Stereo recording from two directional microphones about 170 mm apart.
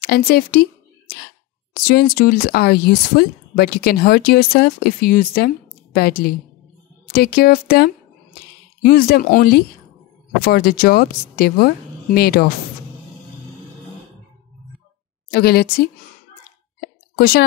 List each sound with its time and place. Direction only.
0.0 s a sound: 65° left (ahead or behind)
1.8 s speech: 65° left (ahead or behind)
15.3 s speech: 65° left (ahead or behind)
17.2 s speech: 65° left (ahead or behind)